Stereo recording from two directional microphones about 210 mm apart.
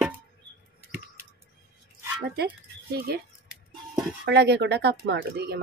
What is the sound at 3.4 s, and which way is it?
Music, 5° right (ahead or behind).